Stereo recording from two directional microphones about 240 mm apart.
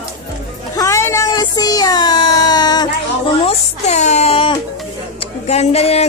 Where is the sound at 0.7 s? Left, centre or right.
Centre.